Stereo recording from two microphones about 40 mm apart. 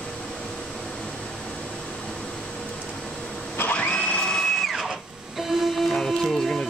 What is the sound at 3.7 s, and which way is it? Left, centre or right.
Printer, left.